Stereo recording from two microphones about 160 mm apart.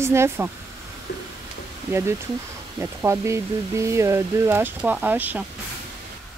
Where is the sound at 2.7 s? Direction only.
15° right (ahead or behind).